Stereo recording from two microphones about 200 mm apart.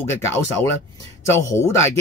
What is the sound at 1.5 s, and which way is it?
Speech, 15° left (ahead or behind).